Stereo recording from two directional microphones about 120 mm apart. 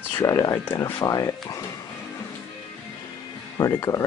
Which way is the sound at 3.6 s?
30° left (ahead or behind).